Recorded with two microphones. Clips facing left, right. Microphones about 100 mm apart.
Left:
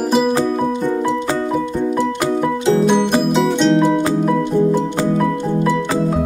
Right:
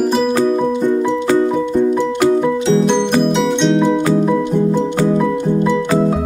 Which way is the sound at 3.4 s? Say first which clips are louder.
Even; centre (ahead or behind).